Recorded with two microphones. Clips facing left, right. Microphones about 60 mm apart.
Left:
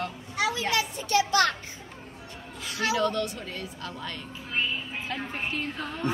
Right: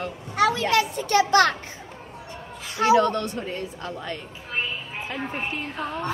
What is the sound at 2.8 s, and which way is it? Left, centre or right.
A woman's voice, right.